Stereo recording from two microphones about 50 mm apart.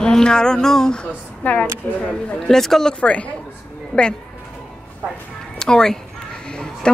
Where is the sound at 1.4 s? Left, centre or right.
Left.